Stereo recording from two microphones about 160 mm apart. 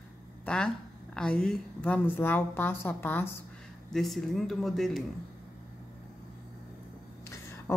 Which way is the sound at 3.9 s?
Centre (ahead or behind).